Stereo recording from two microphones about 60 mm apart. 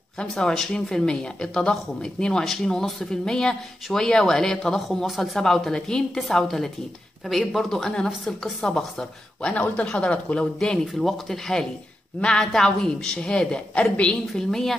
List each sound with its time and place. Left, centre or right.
0.3 s a woman's voice: centre
9.6 s speech: left
10.9 s speech: centre
14.2 s speech: centre